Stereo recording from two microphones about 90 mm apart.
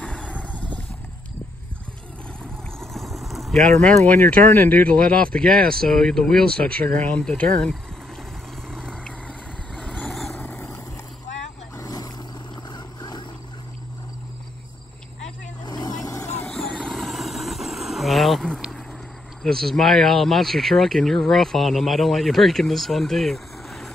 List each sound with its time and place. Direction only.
0.0 s vehicle: 15° left (ahead or behind)
2.8 s vehicle: centre (ahead or behind)
4.2 s speech: 20° left (ahead or behind)
8.7 s vehicle: 10° left (ahead or behind)
10.4 s vehicle: 15° left (ahead or behind)
11.8 s vehicle: 40° left (ahead or behind)
12.7 s a sound: 50° left (ahead or behind)
15.6 s vehicle: 50° left (ahead or behind); by 16.4 s 30° left (ahead or behind)
16.4 s vehicle: 10° left (ahead or behind)
19.4 s speech: 5° left (ahead or behind)